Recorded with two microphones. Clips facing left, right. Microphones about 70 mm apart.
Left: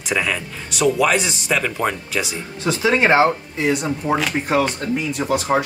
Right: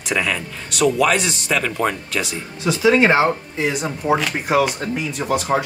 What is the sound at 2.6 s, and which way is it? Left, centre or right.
Speech, left.